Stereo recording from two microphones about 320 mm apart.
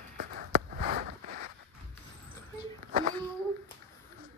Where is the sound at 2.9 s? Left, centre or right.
Right.